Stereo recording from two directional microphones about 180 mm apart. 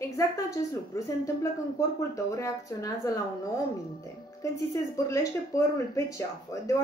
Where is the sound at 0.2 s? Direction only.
15° left (ahead or behind).